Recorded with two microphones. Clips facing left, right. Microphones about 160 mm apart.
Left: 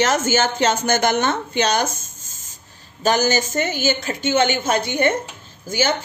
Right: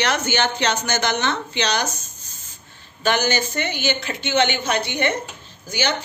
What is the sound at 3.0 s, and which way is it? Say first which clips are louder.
A woman's voice: left 3 dB; 40° left (ahead or behind).